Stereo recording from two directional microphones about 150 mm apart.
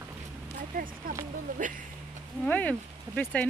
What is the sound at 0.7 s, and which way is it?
Speech, 65° right (ahead or behind).